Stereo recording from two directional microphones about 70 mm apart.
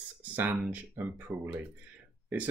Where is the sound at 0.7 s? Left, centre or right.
Right.